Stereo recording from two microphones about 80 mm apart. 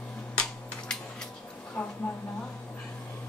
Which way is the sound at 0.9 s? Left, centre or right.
Centre.